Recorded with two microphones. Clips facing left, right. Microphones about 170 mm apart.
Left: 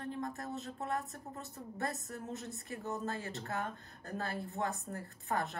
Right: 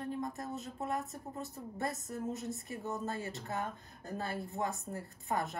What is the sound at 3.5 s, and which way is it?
Speech, 20° right (ahead or behind).